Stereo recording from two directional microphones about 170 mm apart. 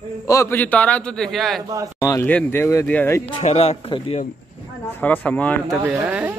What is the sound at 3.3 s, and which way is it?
Speech, 35° left (ahead or behind).